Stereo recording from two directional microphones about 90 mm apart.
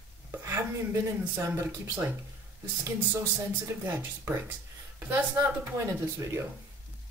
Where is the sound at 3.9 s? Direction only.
25° right (ahead or behind).